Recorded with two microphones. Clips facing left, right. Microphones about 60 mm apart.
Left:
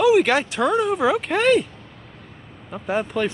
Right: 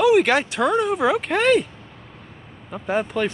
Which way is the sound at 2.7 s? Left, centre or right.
Centre.